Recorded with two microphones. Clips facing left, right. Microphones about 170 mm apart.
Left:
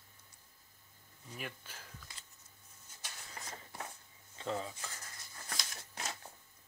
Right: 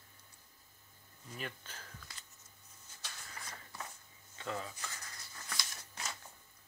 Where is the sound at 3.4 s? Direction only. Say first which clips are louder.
Left 3 dB; 40° left (ahead or behind).